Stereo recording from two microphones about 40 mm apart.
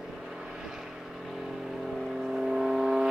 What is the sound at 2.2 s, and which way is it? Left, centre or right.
Vehicle, centre.